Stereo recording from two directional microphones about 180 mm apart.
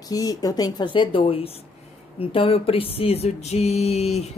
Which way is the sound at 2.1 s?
30° left (ahead or behind).